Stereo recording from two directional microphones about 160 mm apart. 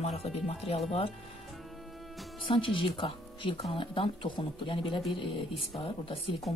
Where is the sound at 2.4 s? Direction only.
30° left (ahead or behind).